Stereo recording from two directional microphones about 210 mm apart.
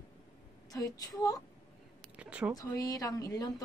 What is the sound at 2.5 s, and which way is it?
Speech, 15° left (ahead or behind).